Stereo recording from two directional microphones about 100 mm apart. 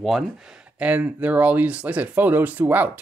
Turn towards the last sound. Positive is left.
turn(degrees=-20)  # may be behind; listen again after turning